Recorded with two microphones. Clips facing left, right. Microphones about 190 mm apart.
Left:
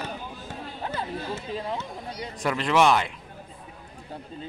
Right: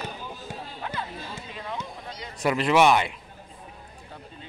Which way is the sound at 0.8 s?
35° left (ahead or behind).